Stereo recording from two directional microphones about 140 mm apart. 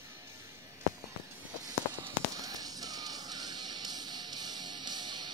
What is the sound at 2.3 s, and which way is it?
Music, 25° right (ahead or behind).